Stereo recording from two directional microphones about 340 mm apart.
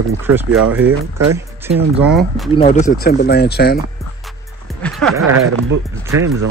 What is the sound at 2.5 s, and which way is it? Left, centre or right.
Speech, centre.